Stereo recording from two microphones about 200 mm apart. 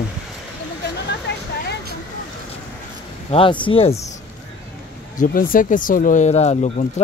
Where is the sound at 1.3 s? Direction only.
55° left (ahead or behind).